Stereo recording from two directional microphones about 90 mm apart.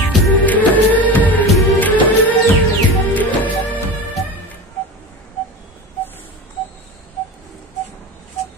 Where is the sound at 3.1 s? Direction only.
20° left (ahead or behind).